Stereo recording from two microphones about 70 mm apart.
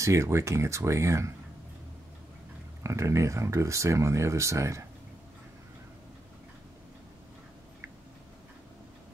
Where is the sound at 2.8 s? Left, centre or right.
Right.